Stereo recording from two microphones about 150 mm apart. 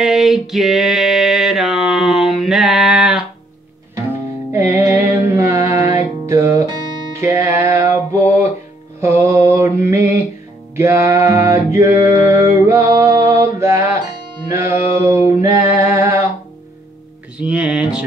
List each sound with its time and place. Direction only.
0.0 s a sound: centre (ahead or behind)
4.5 s music: 15° right (ahead or behind)
9.8 s mantra: 20° right (ahead or behind)
10.8 s music: 20° right (ahead or behind)
14.5 s mantra: 20° right (ahead or behind)
15.9 s a sound: 20° right (ahead or behind)
17.4 s music: 5° right (ahead or behind)